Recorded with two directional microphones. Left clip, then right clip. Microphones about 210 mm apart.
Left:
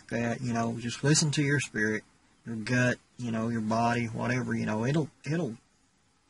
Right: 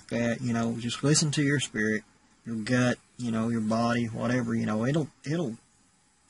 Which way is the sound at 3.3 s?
Centre (ahead or behind).